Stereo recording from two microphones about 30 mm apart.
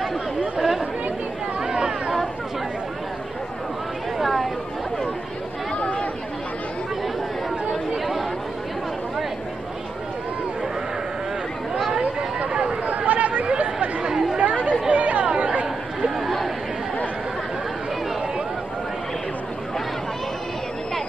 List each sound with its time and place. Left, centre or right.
0.6 s chatter: centre
1.6 s chatter: right
4.2 s a sound: centre
5.8 s chatter: left
12.8 s chatter: right
13.6 s chatter: right
16.2 s chatter: centre